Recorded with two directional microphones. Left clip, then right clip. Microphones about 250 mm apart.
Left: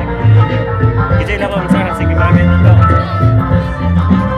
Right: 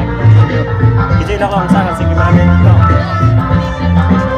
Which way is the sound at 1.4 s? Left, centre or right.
Centre.